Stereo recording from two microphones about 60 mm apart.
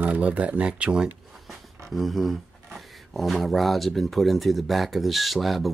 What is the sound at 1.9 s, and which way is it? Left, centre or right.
Speech, centre.